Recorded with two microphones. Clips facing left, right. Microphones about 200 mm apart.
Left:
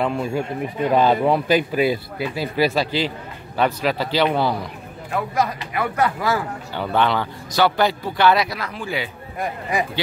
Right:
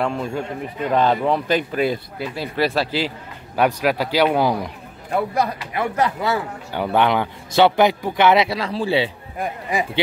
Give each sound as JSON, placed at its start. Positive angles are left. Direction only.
{"t": 0.0, "sound": "a man's voice", "side_deg": 5}
{"t": 5.1, "sound": "speech", "side_deg": -35}